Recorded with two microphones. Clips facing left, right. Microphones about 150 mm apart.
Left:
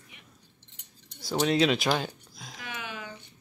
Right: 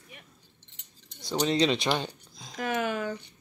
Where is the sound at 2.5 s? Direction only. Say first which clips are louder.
Right 11 dB; 50° right (ahead or behind).